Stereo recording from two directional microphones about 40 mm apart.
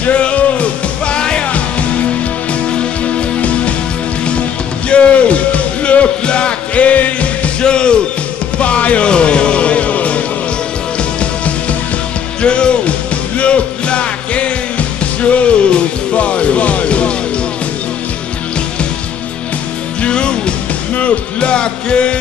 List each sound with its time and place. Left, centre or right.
0.0 s music: left
2.8 s music: left
4.8 s music: left
7.6 s music: left
20.0 s music: left